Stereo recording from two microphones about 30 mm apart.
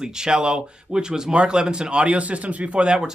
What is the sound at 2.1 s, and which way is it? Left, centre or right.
Speech, right.